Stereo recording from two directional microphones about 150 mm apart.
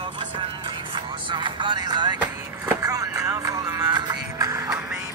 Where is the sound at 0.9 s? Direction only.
30° right (ahead or behind).